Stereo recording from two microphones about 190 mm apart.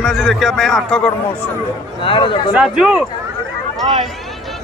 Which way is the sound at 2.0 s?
25° left (ahead or behind).